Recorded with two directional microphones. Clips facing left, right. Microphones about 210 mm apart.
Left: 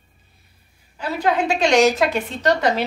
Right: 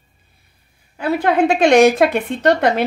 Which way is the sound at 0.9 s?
55° right (ahead or behind).